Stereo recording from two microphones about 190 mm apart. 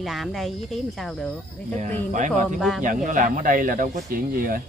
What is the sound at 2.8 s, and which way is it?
Speech, 45° right (ahead or behind).